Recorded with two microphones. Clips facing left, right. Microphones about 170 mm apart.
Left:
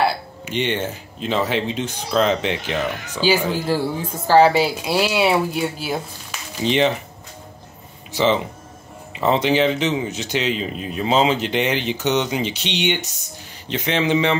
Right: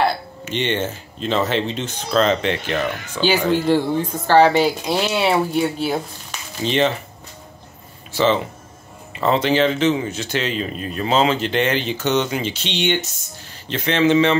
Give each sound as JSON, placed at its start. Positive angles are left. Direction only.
{"t": 0.0, "sound": "speech", "side_deg": 10}
{"t": 6.6, "sound": "speech", "side_deg": 15}
{"t": 8.1, "sound": "speech", "side_deg": 15}